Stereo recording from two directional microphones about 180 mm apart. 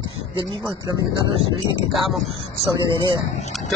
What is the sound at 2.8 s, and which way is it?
Speech, 25° right (ahead or behind).